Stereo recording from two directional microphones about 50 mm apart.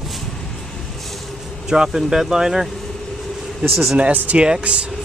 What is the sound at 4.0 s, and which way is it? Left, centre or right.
Speech, right.